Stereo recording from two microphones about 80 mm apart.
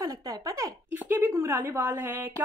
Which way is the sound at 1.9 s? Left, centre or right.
Right.